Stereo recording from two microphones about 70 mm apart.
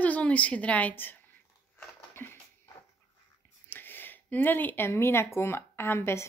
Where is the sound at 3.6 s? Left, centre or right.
Left.